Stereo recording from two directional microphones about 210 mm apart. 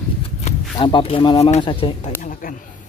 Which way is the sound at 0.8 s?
25° left (ahead or behind).